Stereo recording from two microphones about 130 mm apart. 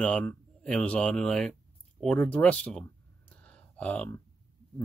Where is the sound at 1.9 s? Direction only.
10° left (ahead or behind).